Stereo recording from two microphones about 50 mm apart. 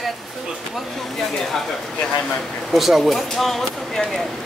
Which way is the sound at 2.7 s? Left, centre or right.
Centre.